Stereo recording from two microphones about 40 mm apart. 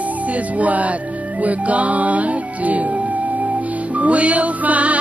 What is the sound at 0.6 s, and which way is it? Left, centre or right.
Music, right.